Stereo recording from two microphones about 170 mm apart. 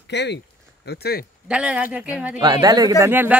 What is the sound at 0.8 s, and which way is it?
Speech, 70° left (ahead or behind).